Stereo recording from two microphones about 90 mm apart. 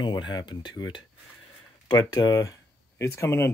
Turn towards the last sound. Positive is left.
turn(degrees=30)  # may be behind; listen again after turning